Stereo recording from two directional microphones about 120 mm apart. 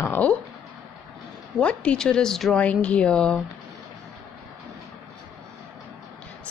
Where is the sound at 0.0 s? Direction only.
15° left (ahead or behind).